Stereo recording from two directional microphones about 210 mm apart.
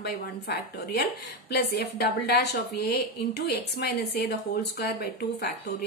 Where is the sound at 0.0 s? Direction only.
50° left (ahead or behind).